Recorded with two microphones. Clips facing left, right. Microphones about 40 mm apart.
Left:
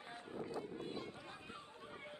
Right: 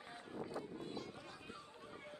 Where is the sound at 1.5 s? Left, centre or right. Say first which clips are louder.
Left 1 dB; left.